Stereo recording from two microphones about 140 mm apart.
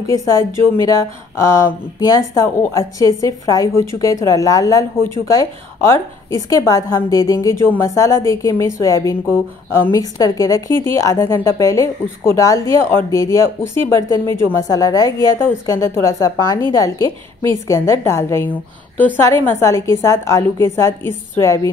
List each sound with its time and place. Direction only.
0.0 s a woman's voice: 25° left (ahead or behind)